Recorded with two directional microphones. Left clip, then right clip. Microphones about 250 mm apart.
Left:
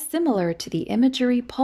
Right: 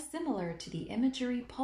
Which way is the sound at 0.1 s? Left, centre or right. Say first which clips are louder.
Left 14 dB; left.